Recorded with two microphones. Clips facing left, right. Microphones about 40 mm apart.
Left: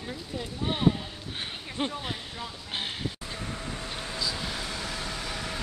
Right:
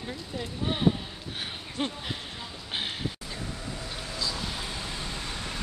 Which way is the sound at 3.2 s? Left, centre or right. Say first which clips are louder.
Left 1 dB; left.